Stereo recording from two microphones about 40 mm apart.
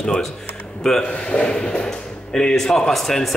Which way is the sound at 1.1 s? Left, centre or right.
Left.